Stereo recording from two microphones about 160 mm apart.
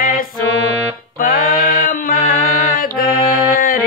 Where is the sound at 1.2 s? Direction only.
60° left (ahead or behind).